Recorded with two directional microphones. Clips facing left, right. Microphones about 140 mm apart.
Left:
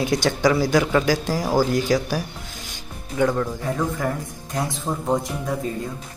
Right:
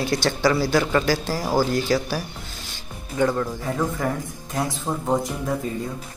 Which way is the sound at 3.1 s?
Centre (ahead or behind).